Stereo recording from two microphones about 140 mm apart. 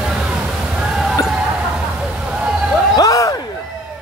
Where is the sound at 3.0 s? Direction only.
25° left (ahead or behind).